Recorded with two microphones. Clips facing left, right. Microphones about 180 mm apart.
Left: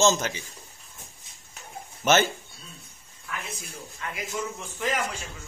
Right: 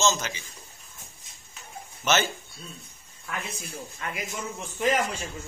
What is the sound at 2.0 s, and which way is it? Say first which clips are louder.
Speech: left 4 dB; 50° left (ahead or behind).